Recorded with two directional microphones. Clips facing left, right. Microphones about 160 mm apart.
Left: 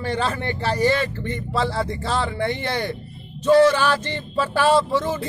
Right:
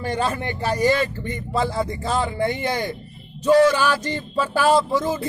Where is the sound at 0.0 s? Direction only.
15° right (ahead or behind).